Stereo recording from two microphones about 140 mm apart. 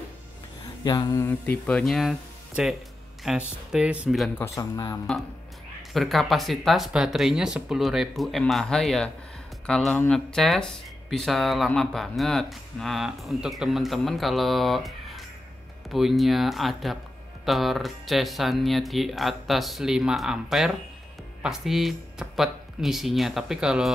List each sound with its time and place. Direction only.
0.8 s speech: 25° left (ahead or behind); by 4.3 s 5° right (ahead or behind)
4.4 s speech: 25° left (ahead or behind)
5.8 s speech: centre (ahead or behind)